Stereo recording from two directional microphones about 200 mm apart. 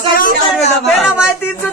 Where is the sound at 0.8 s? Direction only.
5° right (ahead or behind).